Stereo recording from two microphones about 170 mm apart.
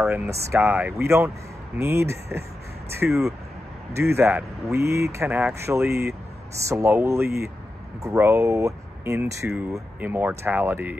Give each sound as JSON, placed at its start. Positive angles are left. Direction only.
{"t": 0.0, "sound": "speech", "side_deg": -15}
{"t": 3.1, "sound": "speech", "side_deg": 0}
{"t": 3.9, "sound": "speech", "side_deg": -15}